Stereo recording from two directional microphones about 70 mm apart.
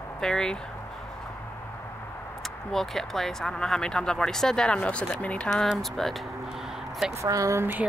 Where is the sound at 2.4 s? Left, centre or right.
Centre.